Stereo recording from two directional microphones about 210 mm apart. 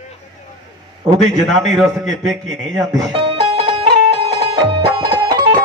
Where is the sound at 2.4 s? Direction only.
20° right (ahead or behind).